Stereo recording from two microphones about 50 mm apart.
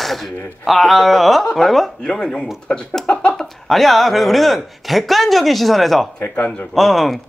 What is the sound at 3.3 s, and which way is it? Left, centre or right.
Speech, centre.